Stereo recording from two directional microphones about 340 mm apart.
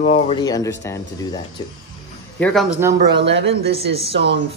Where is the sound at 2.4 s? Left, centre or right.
Centre.